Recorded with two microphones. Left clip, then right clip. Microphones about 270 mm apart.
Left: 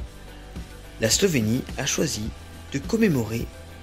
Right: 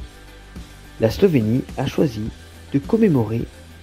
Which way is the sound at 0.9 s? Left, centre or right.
Centre.